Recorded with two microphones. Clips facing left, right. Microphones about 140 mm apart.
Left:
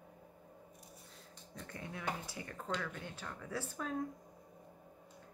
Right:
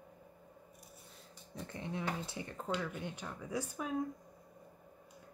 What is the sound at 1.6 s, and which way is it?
Speech, 25° right (ahead or behind).